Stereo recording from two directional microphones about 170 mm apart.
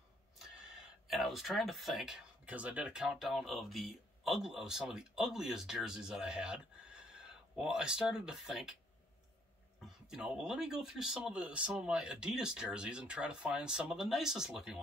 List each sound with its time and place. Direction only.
1.0 s speech: centre (ahead or behind)
10.0 s speech: 5° right (ahead or behind)